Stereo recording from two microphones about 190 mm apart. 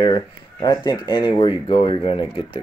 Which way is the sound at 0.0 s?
25° left (ahead or behind).